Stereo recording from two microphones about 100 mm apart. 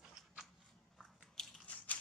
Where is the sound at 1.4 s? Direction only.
5° left (ahead or behind).